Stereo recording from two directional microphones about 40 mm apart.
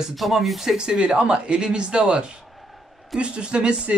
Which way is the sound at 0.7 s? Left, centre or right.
Right.